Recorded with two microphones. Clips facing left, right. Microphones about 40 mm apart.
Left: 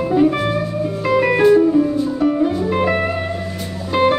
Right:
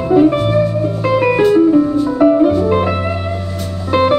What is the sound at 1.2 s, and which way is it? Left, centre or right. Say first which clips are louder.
Music: even; centre.